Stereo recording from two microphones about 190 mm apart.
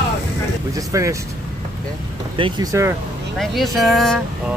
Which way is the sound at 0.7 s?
15° right (ahead or behind).